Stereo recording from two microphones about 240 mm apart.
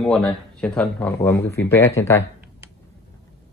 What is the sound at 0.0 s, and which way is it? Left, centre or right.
Speech, centre.